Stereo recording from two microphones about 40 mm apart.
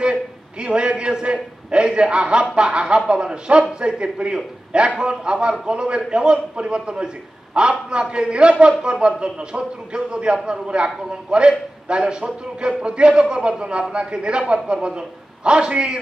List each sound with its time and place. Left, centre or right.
0.0 s a man's voice: right